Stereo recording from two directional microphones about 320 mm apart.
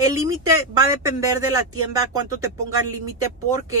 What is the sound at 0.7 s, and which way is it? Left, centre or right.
Speech, centre.